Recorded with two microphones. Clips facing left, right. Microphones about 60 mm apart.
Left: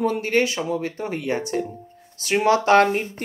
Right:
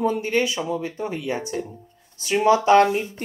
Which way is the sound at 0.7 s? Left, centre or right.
Left.